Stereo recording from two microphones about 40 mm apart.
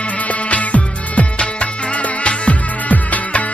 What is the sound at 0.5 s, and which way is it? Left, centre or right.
Music, left.